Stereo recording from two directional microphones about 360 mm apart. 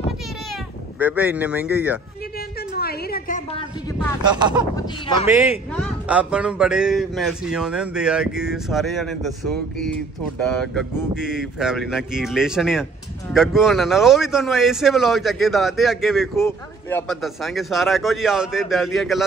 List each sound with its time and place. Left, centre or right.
0.9 s speech: centre
2.7 s a sound: left
4.2 s speech: centre